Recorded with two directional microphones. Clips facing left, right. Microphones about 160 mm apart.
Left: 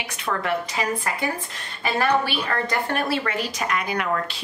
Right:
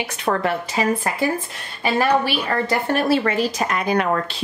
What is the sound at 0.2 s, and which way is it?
Speech, 30° right (ahead or behind).